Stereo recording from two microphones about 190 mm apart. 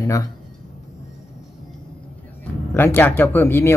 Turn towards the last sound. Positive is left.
turn(degrees=15)  # may be behind; listen again after turning